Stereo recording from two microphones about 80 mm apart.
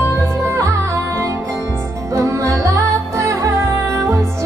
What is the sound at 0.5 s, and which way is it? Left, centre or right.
Music, right.